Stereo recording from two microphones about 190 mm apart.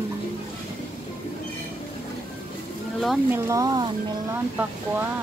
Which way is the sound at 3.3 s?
15° right (ahead or behind).